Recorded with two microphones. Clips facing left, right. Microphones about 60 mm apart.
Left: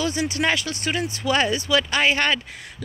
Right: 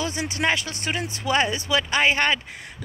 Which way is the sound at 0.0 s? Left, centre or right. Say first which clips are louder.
Left 2 dB; right.